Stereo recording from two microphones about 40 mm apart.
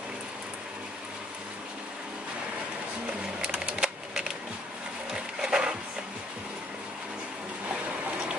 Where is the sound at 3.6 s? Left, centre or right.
Centre.